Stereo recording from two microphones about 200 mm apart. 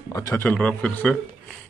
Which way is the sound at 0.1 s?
10° left (ahead or behind).